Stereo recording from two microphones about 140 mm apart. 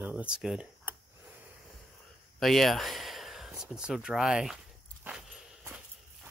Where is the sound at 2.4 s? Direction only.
Centre (ahead or behind).